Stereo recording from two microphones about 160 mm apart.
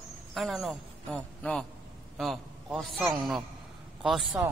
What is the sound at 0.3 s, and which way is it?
A man's voice, centre (ahead or behind).